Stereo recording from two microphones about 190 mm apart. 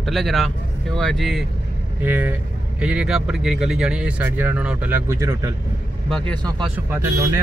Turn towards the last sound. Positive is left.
turn(degrees=-15)  # may be behind; listen again after turning